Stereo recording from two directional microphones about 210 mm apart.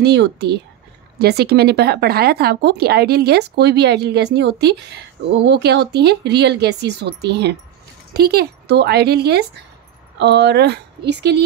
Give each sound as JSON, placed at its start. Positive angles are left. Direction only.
{"t": 0.0, "sound": "a woman's voice", "side_deg": -55}